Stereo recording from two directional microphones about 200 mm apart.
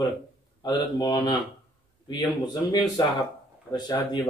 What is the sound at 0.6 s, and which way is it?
A man's voice, 20° left (ahead or behind).